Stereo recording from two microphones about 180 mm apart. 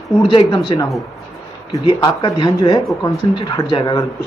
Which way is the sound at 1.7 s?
20° left (ahead or behind).